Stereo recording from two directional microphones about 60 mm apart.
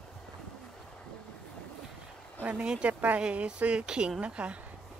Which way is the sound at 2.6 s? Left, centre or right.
Centre.